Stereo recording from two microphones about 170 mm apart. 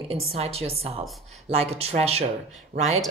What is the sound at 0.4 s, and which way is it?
Speech, 35° right (ahead or behind).